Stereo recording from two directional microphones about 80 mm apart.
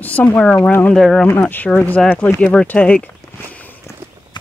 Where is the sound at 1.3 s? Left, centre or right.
Left.